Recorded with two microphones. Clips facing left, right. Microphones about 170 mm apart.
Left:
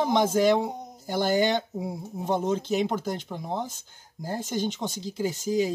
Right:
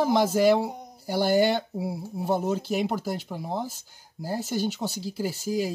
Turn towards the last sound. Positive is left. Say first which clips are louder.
# left 2 dB
turn(degrees=-5)  # may be behind; listen again after turning